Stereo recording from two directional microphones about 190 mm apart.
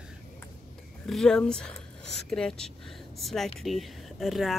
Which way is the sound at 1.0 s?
Centre (ahead or behind).